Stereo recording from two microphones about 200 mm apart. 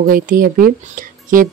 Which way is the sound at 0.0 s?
45° right (ahead or behind).